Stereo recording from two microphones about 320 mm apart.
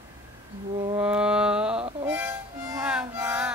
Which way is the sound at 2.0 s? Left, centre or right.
Centre.